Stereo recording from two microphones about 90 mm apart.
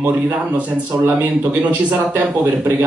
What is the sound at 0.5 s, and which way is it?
Speech, 20° right (ahead or behind).